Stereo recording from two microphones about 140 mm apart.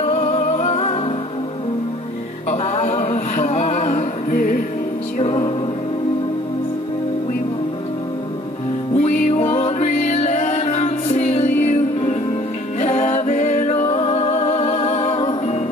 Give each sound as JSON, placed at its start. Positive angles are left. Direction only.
{"t": 0.0, "sound": "music", "side_deg": 55}
{"t": 2.5, "sound": "music", "side_deg": 50}
{"t": 8.9, "sound": "music", "side_deg": 60}